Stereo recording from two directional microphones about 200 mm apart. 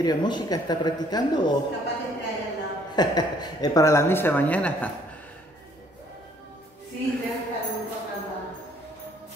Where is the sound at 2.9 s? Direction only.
20° left (ahead or behind).